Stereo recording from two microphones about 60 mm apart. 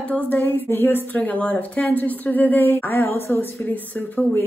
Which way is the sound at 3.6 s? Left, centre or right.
Left.